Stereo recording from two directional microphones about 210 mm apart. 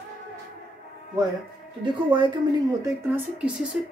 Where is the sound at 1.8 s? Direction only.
25° right (ahead or behind).